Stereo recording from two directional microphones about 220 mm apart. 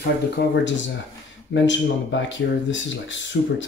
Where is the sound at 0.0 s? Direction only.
50° left (ahead or behind).